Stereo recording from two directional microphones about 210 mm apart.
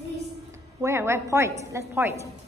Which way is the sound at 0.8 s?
10° right (ahead or behind).